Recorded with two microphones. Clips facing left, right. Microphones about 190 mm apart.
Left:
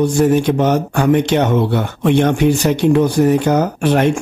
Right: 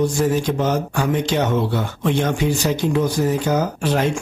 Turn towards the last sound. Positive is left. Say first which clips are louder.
# left 6 dB
turn(degrees=60)  # may be behind; listen again after turning